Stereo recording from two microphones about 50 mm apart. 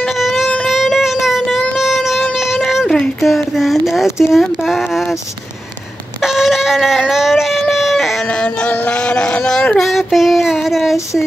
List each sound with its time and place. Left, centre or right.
0.2 s music: centre
0.7 s child singing: centre
1.8 s a sound: centre
3.2 s speech: centre
6.2 s wind instrument: centre
7.1 s speech: centre
7.7 s a sound: centre
9.0 s speech: left
9.8 s child singing: centre